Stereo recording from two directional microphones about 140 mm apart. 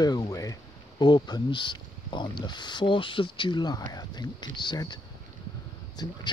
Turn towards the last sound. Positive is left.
turn(degrees=30)  # may be behind; listen again after turning